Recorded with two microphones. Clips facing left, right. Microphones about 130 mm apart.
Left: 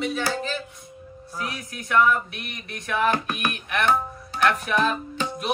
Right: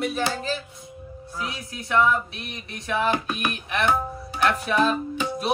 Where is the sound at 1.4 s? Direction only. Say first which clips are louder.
Even; 25° right (ahead or behind).